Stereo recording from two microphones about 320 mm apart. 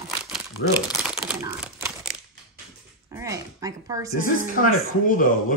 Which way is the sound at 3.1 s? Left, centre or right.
Centre.